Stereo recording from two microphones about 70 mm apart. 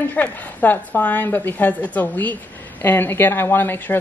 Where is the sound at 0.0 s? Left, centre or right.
Left.